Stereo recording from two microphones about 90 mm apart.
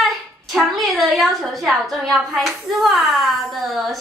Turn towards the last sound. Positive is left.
turn(degrees=0)  # may be behind; listen again after turning